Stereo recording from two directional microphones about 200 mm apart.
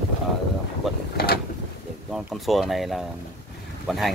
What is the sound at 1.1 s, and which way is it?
Mechanisms, 50° left (ahead or behind).